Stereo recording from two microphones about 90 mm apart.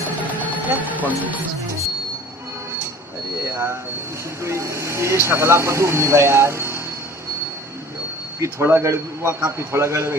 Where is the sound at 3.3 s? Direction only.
30° right (ahead or behind).